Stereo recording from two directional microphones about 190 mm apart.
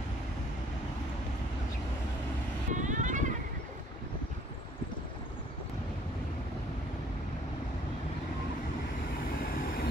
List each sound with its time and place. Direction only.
2.7 s vehicle: 40° right (ahead or behind)
9.4 s vehicle: 50° left (ahead or behind)